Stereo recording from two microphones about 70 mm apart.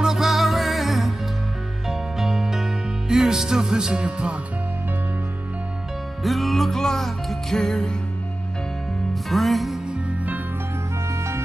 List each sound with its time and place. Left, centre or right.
0.0 s music: centre
6.2 s music: centre
9.3 s music: centre
9.8 s music: right